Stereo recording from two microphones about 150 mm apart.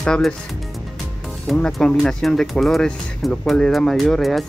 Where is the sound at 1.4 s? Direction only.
Centre (ahead or behind).